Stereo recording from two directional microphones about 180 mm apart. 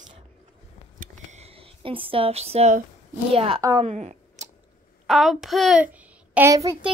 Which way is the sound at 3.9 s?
40° right (ahead or behind).